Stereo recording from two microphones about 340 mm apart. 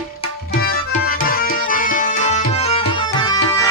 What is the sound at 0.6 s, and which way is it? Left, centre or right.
Tabla, left.